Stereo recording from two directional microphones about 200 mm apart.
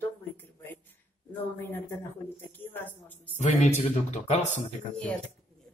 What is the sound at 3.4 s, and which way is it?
Speech, 35° left (ahead or behind).